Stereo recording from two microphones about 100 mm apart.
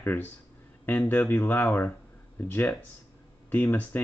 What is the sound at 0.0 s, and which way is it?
Speech, 20° left (ahead or behind).